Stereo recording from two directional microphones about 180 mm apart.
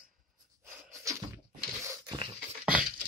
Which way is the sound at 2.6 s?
5° right (ahead or behind).